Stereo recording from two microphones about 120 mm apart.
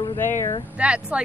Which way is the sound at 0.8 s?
10° right (ahead or behind).